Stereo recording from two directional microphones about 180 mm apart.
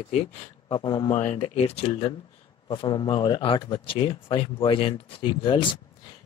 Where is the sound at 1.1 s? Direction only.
40° left (ahead or behind).